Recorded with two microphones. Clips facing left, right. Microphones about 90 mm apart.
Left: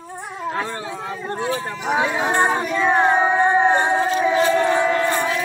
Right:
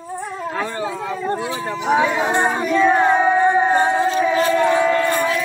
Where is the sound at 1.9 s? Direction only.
20° left (ahead or behind).